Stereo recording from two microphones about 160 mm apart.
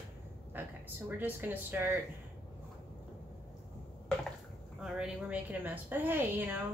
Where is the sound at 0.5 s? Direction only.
10° right (ahead or behind).